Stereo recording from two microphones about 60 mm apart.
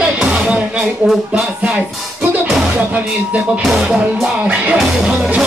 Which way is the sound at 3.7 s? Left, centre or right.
Centre.